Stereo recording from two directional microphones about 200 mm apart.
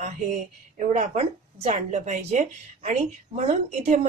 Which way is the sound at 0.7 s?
35° right (ahead or behind).